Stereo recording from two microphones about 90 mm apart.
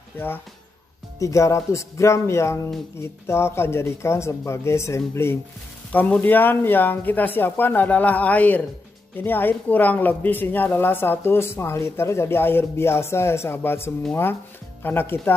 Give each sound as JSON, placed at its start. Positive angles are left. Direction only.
{"t": 1.2, "sound": "speech", "side_deg": 35}
{"t": 5.9, "sound": "speech", "side_deg": 15}